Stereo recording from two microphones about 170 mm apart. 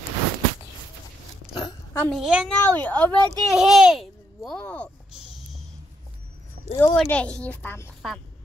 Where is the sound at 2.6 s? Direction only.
10° left (ahead or behind).